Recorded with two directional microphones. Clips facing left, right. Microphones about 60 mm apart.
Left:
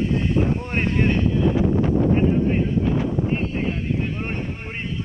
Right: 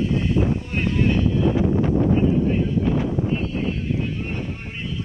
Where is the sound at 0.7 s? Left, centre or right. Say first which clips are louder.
Even; left.